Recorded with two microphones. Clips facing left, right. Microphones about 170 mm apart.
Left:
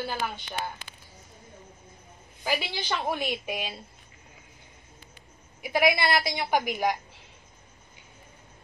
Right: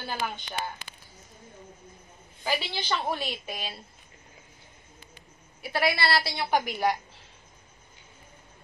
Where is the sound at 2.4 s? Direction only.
10° left (ahead or behind).